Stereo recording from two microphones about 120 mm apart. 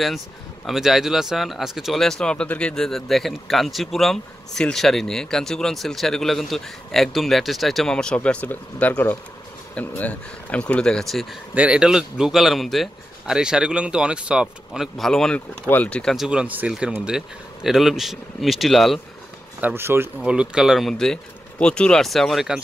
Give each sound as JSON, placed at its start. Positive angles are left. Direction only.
{"t": 0.7, "sound": "speech", "side_deg": 0}
{"t": 11.5, "sound": "speech", "side_deg": -10}
{"t": 16.3, "sound": "speech", "side_deg": -10}
{"t": 19.6, "sound": "speech", "side_deg": -20}
{"t": 20.2, "sound": "speech", "side_deg": -5}